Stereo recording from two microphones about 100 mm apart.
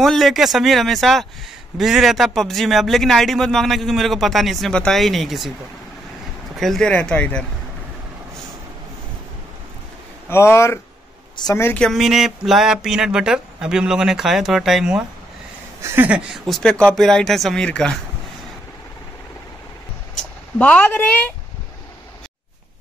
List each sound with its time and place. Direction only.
0.0 s a man's voice: centre (ahead or behind)
6.5 s speech: centre (ahead or behind)
6.9 s speech: 15° left (ahead or behind)
10.3 s speech: 25° left (ahead or behind)
11.4 s a woman's voice: 45° left (ahead or behind)
11.9 s a man's voice: 5° right (ahead or behind)
15.8 s speech: 25° right (ahead or behind)
16.4 s a man's voice: 5° left (ahead or behind)
20.5 s speech: 10° left (ahead or behind)